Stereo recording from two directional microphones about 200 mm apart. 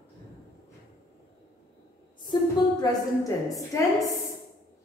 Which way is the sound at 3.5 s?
15° left (ahead or behind).